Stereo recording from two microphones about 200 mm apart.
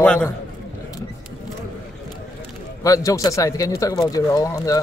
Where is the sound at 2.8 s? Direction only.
15° left (ahead or behind).